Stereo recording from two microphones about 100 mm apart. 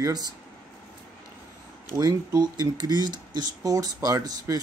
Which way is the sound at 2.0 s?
40° right (ahead or behind).